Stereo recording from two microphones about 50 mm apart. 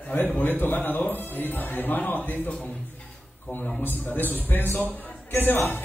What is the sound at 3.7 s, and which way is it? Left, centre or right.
A man's voice, left.